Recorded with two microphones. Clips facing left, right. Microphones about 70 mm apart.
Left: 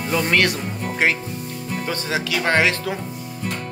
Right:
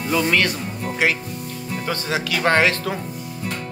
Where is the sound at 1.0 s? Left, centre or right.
Left.